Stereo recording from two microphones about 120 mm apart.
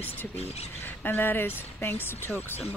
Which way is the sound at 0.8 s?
15° left (ahead or behind).